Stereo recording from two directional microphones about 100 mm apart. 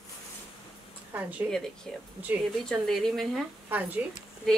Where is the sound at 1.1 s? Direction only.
20° right (ahead or behind).